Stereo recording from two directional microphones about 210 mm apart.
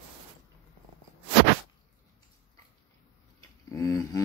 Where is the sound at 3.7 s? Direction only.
15° left (ahead or behind).